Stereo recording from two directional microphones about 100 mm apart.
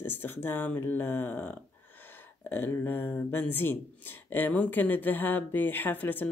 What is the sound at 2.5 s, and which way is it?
Speech, 20° left (ahead or behind).